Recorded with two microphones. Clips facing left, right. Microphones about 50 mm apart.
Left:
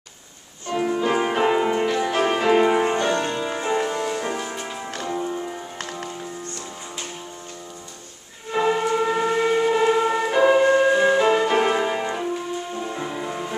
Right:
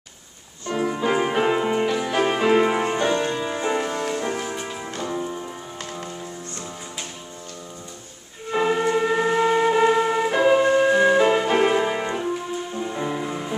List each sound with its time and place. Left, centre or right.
0.7 s music: centre
3.6 s music: centre
5.8 s music: left
8.5 s music: centre